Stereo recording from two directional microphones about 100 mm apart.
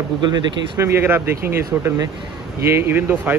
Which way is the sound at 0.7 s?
25° right (ahead or behind).